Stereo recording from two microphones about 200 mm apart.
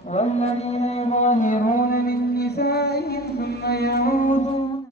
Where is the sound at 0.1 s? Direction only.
35° left (ahead or behind).